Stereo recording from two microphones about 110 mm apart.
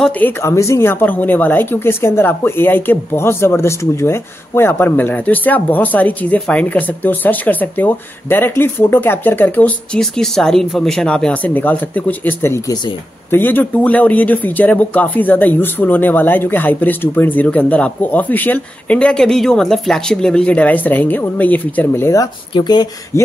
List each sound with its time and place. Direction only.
0.2 s speech: 25° left (ahead or behind)
9.9 s speech: 5° left (ahead or behind)
22.5 s speech: 45° left (ahead or behind)
23.1 s speech: 25° left (ahead or behind)